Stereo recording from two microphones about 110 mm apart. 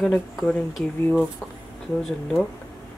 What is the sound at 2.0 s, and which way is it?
Speech, centre (ahead or behind).